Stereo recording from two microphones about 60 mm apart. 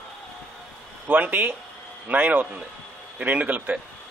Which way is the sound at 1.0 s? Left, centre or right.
Right.